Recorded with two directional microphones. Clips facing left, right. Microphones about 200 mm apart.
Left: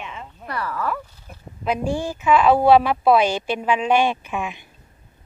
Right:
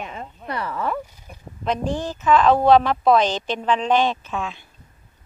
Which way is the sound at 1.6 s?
10° left (ahead or behind).